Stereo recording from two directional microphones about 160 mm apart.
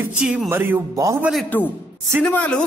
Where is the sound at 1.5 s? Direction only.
10° left (ahead or behind).